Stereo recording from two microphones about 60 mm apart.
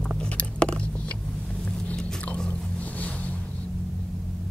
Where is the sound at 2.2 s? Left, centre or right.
Left.